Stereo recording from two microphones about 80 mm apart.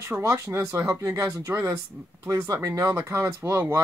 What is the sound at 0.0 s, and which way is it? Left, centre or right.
Speech, right.